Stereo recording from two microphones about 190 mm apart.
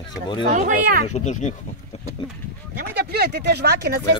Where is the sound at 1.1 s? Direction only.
40° left (ahead or behind).